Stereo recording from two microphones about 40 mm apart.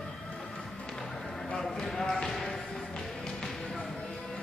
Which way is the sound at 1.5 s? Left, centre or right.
Centre.